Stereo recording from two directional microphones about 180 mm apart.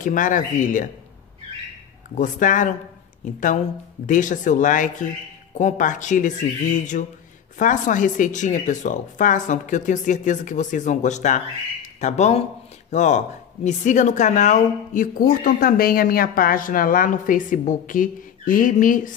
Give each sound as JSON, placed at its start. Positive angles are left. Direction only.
{"t": 0.0, "sound": "speech", "side_deg": 45}
{"t": 2.1, "sound": "speech", "side_deg": 45}
{"t": 4.0, "sound": "speech", "side_deg": 45}